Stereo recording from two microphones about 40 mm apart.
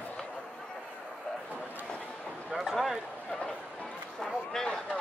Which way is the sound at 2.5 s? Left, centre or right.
Centre.